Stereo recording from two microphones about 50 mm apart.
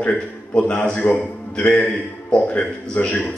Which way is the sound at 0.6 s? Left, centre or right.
Left.